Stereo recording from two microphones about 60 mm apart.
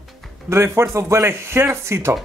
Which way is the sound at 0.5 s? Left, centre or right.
Right.